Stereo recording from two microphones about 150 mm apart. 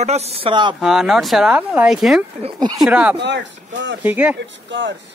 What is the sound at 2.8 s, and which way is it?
Speech, 10° right (ahead or behind).